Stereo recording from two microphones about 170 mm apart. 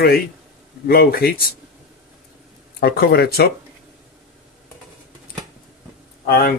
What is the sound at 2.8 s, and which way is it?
Speech, 70° left (ahead or behind).